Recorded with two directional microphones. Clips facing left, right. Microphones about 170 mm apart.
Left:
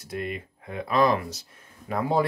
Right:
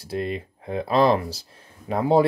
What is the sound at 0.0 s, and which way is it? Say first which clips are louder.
Speech: right 5 dB; 30° right (ahead or behind).